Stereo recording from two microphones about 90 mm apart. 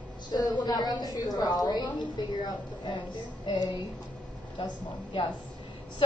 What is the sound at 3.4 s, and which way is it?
Speech, 50° left (ahead or behind).